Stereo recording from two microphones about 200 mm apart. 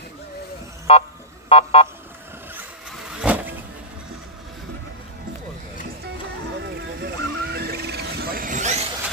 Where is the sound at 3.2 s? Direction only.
10° right (ahead or behind).